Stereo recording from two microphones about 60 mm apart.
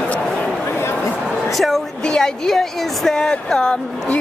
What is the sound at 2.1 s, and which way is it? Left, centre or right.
Speech, centre.